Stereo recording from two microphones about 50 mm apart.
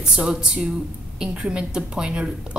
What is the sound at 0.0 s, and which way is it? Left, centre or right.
Speech, centre.